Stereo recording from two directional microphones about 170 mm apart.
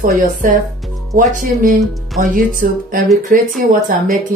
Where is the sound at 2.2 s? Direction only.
55° right (ahead or behind).